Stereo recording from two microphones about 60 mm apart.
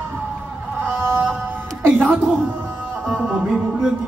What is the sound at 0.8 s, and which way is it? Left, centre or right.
Music, right.